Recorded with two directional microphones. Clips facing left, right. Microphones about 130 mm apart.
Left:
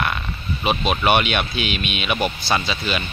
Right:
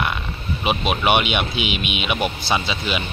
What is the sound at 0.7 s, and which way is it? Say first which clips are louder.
Speech: left 1 dB; 15° right (ahead or behind).